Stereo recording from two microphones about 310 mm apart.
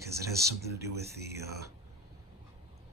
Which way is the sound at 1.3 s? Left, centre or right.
Centre.